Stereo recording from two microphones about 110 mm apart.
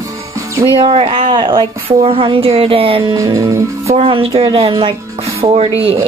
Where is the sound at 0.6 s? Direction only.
55° right (ahead or behind).